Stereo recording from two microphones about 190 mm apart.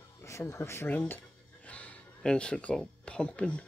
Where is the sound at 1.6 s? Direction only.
5° left (ahead or behind).